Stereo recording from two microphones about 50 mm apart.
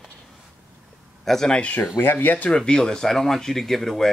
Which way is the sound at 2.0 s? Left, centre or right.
Left.